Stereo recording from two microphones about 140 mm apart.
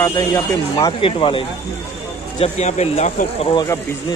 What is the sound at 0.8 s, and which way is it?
Speech, 40° left (ahead or behind).